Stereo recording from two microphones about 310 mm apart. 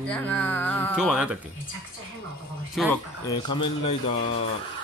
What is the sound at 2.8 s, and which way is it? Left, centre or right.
Speech, centre.